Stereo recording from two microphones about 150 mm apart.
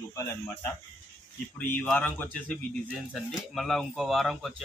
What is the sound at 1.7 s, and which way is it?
Speech, 10° left (ahead or behind).